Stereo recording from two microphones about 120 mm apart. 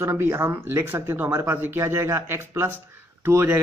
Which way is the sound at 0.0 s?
20° right (ahead or behind).